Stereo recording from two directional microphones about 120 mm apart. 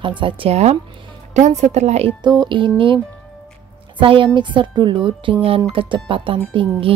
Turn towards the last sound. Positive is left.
turn(degrees=-45)  # may be behind; listen again after turning